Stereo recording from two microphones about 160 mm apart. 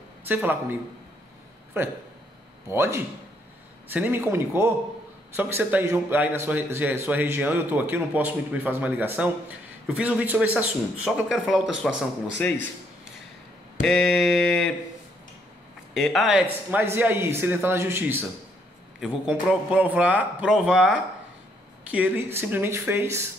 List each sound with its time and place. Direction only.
0.2 s a man's voice: 10° right (ahead or behind)
1.8 s a man's voice: 15° right (ahead or behind)
12.4 s speech: 10° left (ahead or behind)
13.8 s a sound: centre (ahead or behind)
15.9 s a man's voice: centre (ahead or behind); by 23.2 s 15° right (ahead or behind)